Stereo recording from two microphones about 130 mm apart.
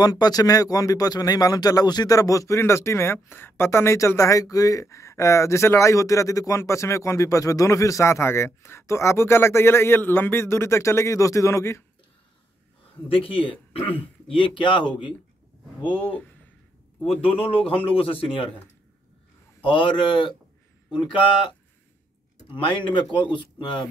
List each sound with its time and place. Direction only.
0.0 s speech: 30° left (ahead or behind)
13.1 s a man's voice: 45° left (ahead or behind)
17.4 s a man's voice: 45° left (ahead or behind)
19.6 s speech: 40° left (ahead or behind)
22.7 s speech: 40° left (ahead or behind)